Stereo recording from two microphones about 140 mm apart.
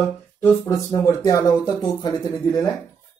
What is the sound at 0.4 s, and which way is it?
Speech, 25° left (ahead or behind).